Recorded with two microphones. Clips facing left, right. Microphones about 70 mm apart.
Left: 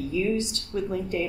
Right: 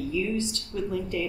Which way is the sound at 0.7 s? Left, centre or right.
Left.